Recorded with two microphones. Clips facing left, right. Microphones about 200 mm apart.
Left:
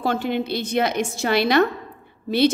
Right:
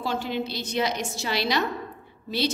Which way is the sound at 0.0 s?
55° left (ahead or behind).